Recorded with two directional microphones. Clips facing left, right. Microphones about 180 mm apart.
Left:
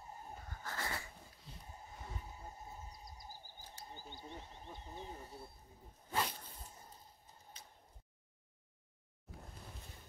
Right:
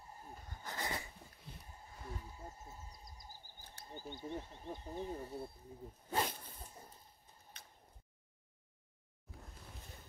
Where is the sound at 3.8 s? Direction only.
55° right (ahead or behind).